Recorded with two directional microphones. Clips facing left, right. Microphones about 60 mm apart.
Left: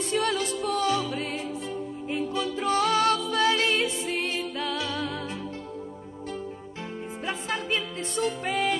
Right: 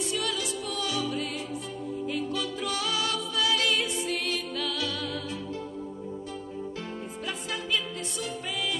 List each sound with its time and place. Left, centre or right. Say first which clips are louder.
0.1 s music: left 5 dB; left
7.2 s music: left 4 dB; left